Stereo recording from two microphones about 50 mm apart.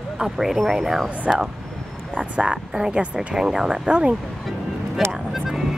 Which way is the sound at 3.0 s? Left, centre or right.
Centre.